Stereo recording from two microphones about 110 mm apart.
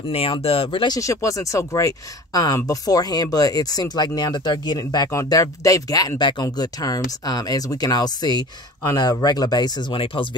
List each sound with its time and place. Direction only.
0.1 s speech: 65° left (ahead or behind)
0.9 s speech: 30° left (ahead or behind); by 10.2 s 45° left (ahead or behind)